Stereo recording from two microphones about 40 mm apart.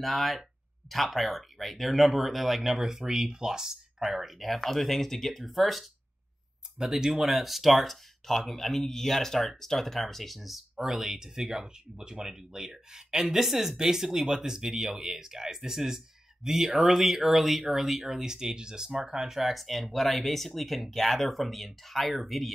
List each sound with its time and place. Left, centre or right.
0.0 s speech: centre
4.2 s speech: centre
6.8 s speech: centre
10.8 s speech: centre